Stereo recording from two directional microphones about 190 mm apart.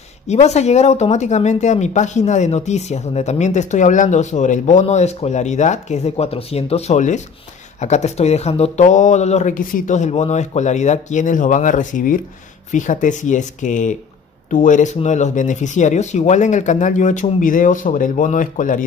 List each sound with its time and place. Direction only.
0.3 s speech: 35° left (ahead or behind)